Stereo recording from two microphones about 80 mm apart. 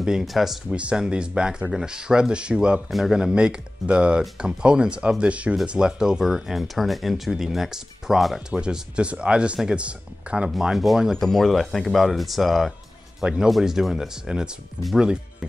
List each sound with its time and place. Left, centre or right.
0.0 s speech: centre
10.5 s speech: centre